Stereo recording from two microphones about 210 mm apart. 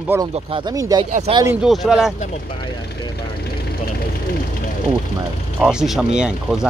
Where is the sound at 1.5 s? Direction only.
Centre (ahead or behind).